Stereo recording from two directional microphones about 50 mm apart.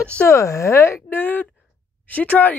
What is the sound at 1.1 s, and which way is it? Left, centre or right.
Speech, left.